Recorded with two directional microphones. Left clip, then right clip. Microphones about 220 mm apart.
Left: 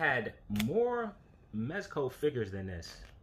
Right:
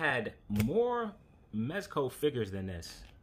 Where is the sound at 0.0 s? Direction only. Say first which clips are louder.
Left 1 dB; 10° right (ahead or behind).